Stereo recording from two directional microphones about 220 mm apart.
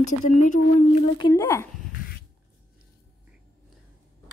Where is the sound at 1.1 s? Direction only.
15° left (ahead or behind).